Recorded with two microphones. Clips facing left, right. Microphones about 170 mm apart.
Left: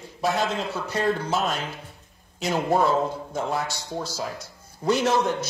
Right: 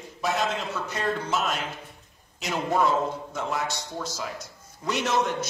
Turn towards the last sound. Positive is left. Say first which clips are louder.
# left 3 dB
turn(degrees=30)  # may be behind; listen again after turning